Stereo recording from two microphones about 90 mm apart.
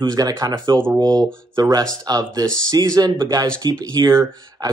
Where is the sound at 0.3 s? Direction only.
45° right (ahead or behind).